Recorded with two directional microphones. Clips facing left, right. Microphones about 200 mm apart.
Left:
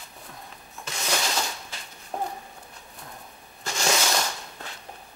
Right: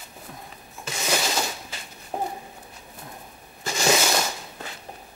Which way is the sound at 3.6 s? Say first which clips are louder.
Right 4 dB; 5° right (ahead or behind).